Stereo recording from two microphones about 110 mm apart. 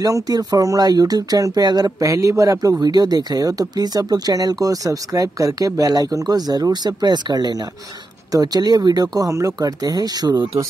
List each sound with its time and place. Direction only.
0.0 s speech: 35° right (ahead or behind)